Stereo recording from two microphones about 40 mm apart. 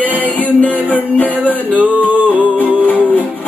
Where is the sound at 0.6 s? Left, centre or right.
Left.